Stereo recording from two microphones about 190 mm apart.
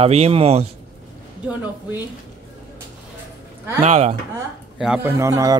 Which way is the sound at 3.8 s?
35° right (ahead or behind).